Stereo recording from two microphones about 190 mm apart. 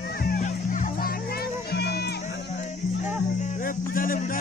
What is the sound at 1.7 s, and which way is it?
Music, 60° left (ahead or behind).